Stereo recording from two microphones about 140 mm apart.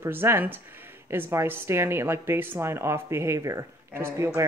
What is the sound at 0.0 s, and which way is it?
Speech, 15° right (ahead or behind).